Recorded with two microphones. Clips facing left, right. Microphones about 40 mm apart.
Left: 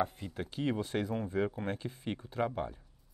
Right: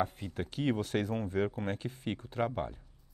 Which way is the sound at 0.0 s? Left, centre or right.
Centre.